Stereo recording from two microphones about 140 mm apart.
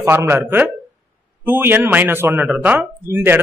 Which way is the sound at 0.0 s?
15° right (ahead or behind).